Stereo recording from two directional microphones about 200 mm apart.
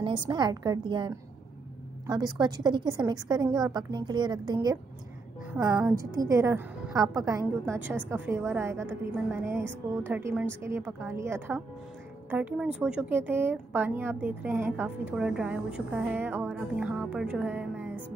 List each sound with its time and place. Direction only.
0.0 s a woman's voice: 25° right (ahead or behind); by 17.9 s 5° right (ahead or behind)